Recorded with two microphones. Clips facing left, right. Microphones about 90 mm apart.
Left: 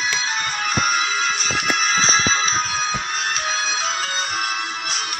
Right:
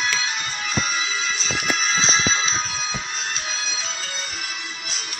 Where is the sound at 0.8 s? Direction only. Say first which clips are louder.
Left 5 dB; 60° left (ahead or behind).